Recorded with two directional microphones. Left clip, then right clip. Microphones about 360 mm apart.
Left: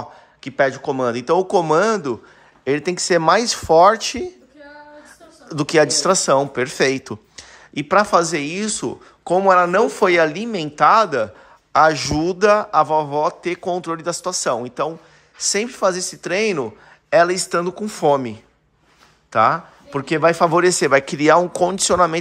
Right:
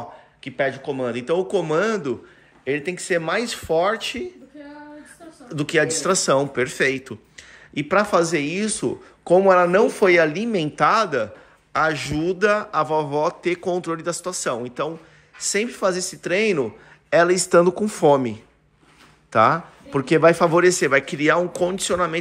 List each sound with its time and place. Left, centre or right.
0.4 s a man's voice: centre
5.5 s a man's voice: centre